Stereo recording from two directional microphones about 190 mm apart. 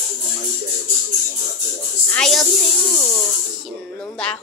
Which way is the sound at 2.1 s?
Centre (ahead or behind).